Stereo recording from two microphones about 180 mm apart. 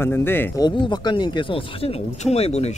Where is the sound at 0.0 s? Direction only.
10° left (ahead or behind).